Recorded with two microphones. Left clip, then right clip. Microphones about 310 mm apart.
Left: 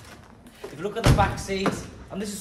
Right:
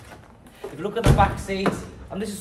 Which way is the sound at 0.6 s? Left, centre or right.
Centre.